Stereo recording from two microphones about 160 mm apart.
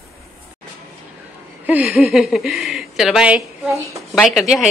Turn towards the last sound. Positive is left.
turn(degrees=-5)  # may be behind; listen again after turning